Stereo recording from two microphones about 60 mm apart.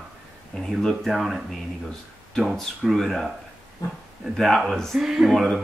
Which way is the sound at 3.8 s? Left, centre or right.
Left.